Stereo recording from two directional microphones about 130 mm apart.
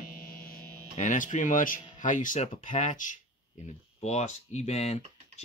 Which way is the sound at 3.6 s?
60° left (ahead or behind).